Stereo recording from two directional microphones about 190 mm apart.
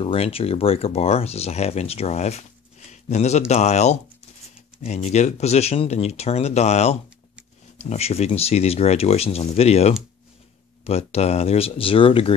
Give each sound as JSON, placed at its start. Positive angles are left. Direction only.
{"t": 0.0, "sound": "speech", "side_deg": 30}